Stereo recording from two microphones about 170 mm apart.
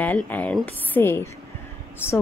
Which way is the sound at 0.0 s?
10° left (ahead or behind).